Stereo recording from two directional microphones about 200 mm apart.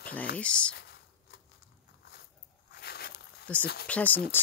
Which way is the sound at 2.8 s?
55° left (ahead or behind).